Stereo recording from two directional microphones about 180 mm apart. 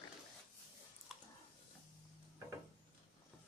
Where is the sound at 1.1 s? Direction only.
Centre (ahead or behind).